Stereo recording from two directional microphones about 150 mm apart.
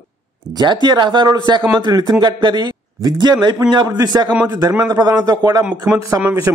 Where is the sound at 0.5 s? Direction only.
25° right (ahead or behind).